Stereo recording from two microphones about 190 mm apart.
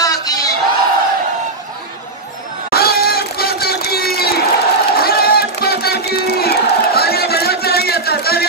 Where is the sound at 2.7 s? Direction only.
55° left (ahead or behind).